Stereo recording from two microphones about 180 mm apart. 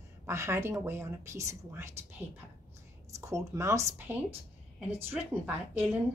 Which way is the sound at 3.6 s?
15° right (ahead or behind).